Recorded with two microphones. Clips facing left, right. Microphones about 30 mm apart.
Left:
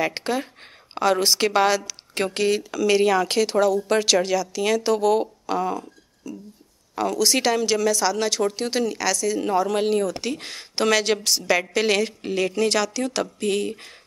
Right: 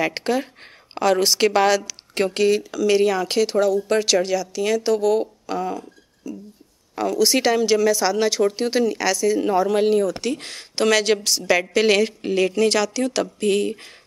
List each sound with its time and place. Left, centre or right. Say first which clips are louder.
0.0 s a woman's voice: right 2 dB; centre